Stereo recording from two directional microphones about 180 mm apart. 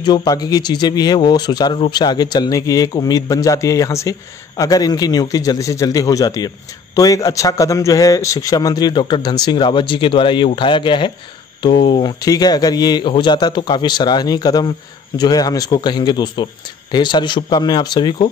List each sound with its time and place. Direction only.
0.0 s a man's voice: 25° left (ahead or behind)